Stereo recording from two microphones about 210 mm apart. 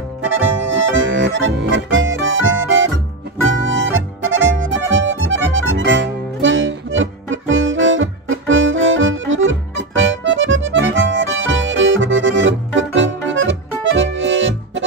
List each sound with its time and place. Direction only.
0.2 s accordion: 65° right (ahead or behind)
3.6 s music: 65° right (ahead or behind)
13.9 s accordion: 65° right (ahead or behind)